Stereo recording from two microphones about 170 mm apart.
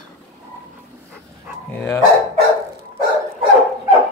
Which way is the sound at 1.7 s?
15° left (ahead or behind).